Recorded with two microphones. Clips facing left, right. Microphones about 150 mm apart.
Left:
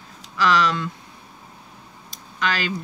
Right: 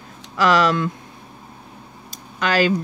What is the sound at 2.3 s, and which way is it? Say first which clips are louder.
Speech: right 7 dB; 45° right (ahead or behind).